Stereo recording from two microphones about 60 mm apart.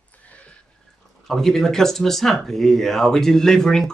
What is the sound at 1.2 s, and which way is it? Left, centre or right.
Speech, centre.